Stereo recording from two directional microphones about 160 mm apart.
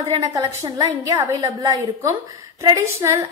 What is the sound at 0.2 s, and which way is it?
A woman's voice, 20° right (ahead or behind).